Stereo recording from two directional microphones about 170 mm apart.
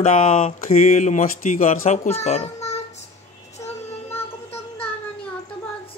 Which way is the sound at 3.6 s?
20° left (ahead or behind).